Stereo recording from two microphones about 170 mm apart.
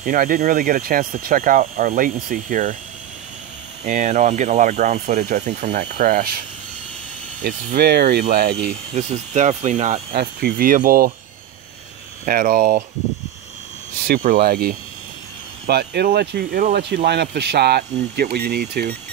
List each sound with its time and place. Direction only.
0.0 s speech: 55° right (ahead or behind)
3.8 s speech: 45° right (ahead or behind)
7.4 s speech: 70° right (ahead or behind)
8.9 s speech: 40° right (ahead or behind)
10.1 s speech: 60° right (ahead or behind)
12.3 s speech: 55° right (ahead or behind)
14.0 s speech: 55° right (ahead or behind)
15.6 s speech: 70° right (ahead or behind)